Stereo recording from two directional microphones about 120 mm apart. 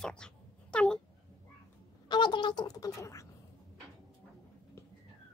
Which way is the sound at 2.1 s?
40° left (ahead or behind).